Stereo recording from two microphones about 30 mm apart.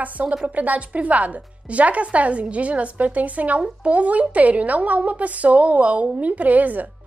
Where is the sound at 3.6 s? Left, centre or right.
Right.